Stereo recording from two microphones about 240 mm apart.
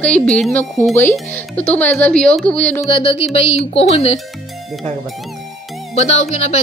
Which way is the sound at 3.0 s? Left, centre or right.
Left.